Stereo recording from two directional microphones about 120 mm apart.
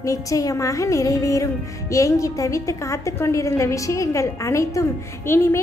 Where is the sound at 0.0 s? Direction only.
30° left (ahead or behind).